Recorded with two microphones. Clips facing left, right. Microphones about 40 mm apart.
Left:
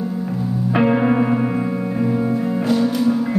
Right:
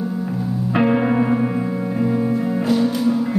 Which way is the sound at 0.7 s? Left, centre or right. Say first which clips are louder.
Left 1 dB; centre.